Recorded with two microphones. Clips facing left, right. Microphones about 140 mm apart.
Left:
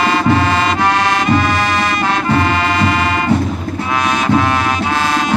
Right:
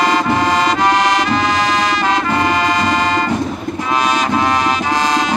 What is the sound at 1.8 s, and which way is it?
Music, 15° right (ahead or behind).